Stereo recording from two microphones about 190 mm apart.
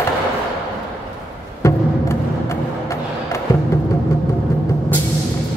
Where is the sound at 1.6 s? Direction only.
15° left (ahead or behind).